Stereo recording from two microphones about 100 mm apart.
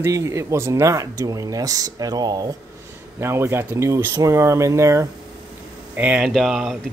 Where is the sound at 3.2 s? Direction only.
25° right (ahead or behind).